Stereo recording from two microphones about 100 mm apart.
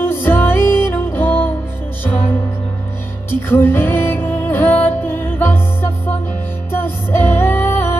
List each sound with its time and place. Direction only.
0.0 s music: 20° left (ahead or behind)